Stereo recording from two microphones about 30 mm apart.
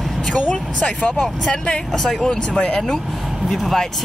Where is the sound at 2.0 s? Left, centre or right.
Centre.